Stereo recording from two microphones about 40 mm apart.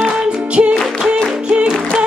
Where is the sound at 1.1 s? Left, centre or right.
Right.